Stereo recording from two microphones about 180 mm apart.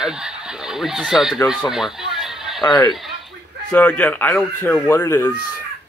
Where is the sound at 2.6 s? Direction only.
25° left (ahead or behind).